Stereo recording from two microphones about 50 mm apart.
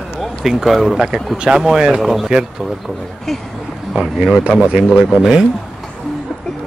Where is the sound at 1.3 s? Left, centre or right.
Centre.